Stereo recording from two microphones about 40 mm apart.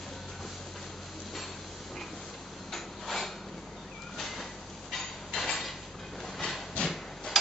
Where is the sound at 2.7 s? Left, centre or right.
Centre.